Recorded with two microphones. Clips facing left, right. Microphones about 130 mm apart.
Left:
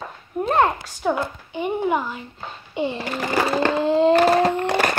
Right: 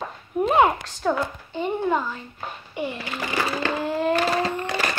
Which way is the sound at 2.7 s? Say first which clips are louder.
Left 5 dB; 25° left (ahead or behind).